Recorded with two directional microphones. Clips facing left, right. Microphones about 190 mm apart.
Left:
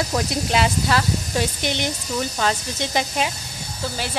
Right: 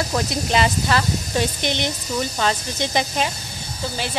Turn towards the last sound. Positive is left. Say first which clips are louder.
# right 1 dB
turn(degrees=5)  # may be behind; listen again after turning